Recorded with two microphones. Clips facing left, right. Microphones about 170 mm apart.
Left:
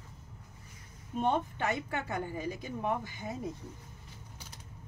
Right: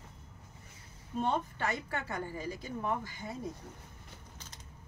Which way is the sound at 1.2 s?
15° left (ahead or behind).